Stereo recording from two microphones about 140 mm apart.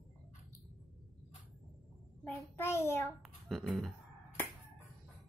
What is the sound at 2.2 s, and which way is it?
Speech, 15° left (ahead or behind).